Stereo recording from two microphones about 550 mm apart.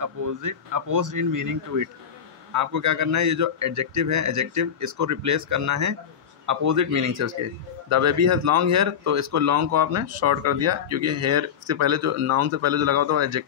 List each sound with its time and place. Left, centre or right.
0.0 s a man's voice: right